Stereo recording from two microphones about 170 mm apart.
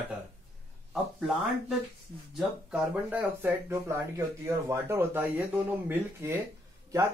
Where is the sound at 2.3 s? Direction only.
5° right (ahead or behind).